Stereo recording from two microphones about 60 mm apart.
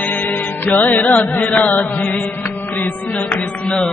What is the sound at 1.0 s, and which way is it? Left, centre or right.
Chant, left.